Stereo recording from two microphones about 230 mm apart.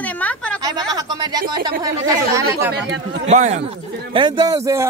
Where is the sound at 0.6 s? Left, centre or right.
Centre.